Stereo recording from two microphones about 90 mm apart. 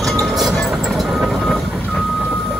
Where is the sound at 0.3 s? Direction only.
Centre (ahead or behind).